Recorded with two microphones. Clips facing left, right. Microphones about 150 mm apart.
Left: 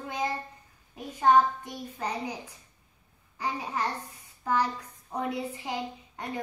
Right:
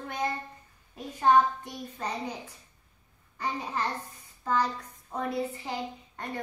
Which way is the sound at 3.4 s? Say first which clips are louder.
Even; 10° left (ahead or behind).